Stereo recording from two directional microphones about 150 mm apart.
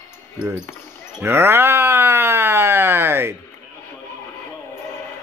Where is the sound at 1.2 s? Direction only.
15° right (ahead or behind).